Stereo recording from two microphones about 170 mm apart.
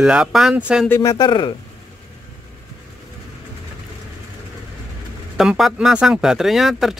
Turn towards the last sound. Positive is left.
turn(degrees=0)  # may be behind; listen again after turning